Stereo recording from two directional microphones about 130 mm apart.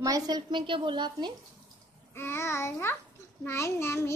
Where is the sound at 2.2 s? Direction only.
20° left (ahead or behind).